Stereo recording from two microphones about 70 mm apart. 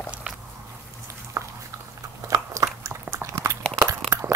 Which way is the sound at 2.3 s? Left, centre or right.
Right.